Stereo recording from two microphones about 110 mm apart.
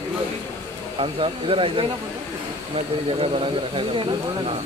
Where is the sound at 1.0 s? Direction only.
55° right (ahead or behind).